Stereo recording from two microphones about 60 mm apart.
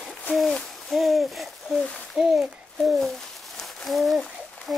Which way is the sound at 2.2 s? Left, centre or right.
Centre.